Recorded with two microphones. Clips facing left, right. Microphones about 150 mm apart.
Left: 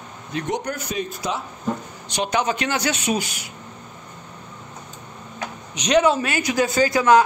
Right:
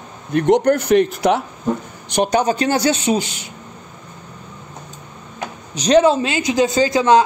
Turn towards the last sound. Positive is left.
turn(degrees=-25)  # may be behind; listen again after turning